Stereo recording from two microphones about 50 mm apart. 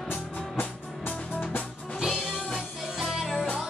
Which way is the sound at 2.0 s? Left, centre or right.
Centre.